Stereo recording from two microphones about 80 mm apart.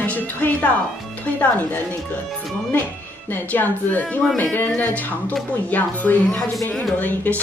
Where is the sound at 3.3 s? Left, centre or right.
Left.